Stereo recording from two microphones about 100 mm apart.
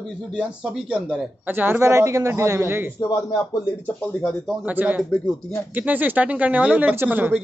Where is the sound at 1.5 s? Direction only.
20° right (ahead or behind).